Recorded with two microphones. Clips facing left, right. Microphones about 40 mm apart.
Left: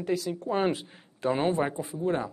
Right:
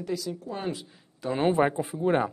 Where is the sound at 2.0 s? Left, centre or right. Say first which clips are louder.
Right 4 dB; right.